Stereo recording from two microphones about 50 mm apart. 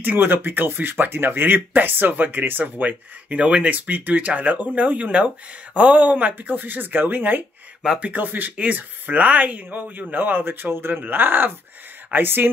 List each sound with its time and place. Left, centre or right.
0.0 s speech: right
3.7 s speech: right